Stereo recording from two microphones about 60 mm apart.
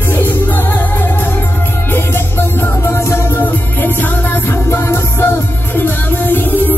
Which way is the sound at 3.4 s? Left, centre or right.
Left.